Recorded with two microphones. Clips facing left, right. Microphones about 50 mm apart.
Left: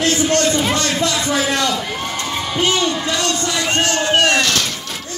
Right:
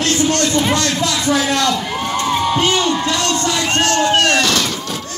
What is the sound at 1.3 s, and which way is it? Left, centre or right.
Speech, centre.